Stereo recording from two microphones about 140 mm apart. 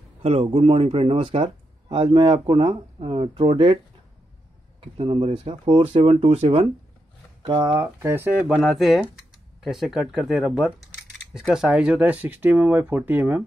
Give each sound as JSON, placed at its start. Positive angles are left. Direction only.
{"t": 0.2, "sound": "speech", "side_deg": -45}
{"t": 7.4, "sound": "speech", "side_deg": -25}